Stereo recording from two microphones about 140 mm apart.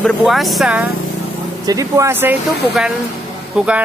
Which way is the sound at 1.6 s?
25° right (ahead or behind).